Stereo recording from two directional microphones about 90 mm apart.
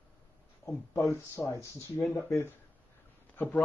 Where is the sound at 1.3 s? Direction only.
35° left (ahead or behind).